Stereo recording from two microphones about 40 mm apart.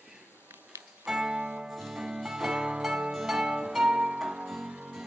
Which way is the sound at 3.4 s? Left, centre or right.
Centre.